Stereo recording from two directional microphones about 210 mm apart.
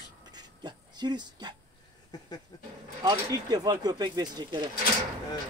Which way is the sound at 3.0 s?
20° right (ahead or behind).